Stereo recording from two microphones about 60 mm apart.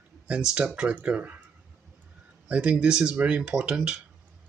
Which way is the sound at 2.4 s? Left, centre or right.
Right.